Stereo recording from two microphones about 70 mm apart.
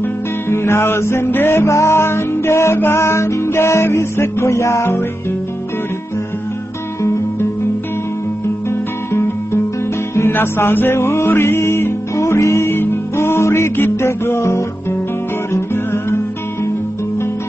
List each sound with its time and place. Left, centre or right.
0.5 s music: left
8.6 s guitar: left
10.1 s music: left